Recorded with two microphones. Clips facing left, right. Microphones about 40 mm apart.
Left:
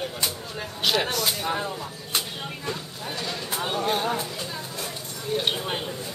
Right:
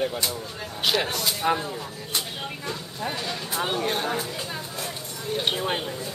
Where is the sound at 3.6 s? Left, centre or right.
Centre.